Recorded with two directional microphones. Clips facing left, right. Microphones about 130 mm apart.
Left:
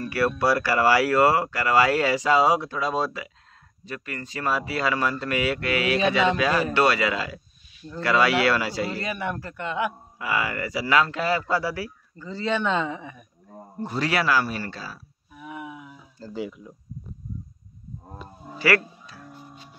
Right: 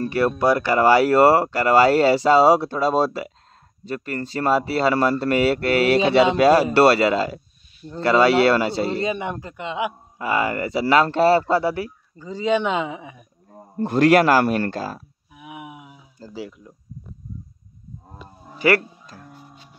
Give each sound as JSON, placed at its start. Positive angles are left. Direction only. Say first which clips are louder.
{"t": 0.0, "sound": "speech", "louder": "right 4 dB", "side_deg": -25}
{"t": 10.1, "sound": "speech", "louder": "right 7 dB", "side_deg": -25}
{"t": 13.8, "sound": "speech", "louder": "right 10 dB", "side_deg": -50}
{"t": 15.3, "sound": "a sound", "louder": "left 1 dB", "side_deg": -15}
{"t": 16.3, "sound": "speech", "louder": "left 2 dB", "side_deg": 0}
{"t": 18.6, "sound": "speech", "louder": "right 4 dB", "side_deg": -25}
{"t": 19.1, "sound": "music", "louder": "right 2 dB", "side_deg": -45}